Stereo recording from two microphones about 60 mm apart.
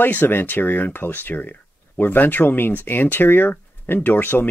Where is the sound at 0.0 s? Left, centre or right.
Left.